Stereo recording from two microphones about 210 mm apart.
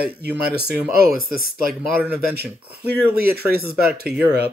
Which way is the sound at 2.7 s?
45° right (ahead or behind).